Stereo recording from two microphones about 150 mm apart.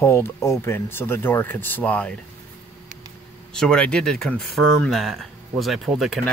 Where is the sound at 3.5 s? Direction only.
5° left (ahead or behind).